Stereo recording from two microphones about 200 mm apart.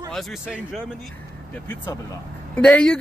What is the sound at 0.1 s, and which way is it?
Speech, centre (ahead or behind).